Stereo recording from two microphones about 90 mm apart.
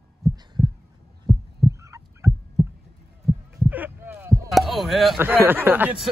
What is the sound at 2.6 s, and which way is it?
Heart sounds, centre (ahead or behind).